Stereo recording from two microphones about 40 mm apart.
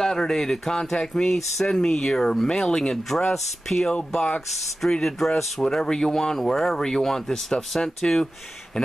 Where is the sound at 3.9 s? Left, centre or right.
Left.